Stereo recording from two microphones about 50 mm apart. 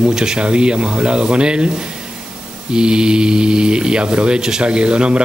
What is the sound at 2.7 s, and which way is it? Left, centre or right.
A man's voice, centre.